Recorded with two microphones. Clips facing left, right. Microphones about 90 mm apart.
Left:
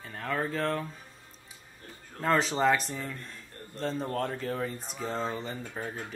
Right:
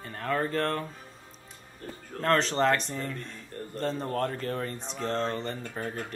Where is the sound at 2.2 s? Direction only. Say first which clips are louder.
Right 1 dB; 5° left (ahead or behind).